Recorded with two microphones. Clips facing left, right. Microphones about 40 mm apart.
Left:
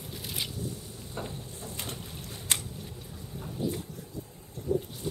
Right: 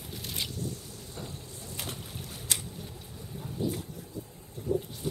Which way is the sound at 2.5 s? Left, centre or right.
Left.